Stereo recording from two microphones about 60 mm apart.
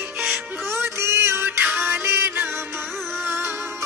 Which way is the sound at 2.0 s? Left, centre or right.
Right.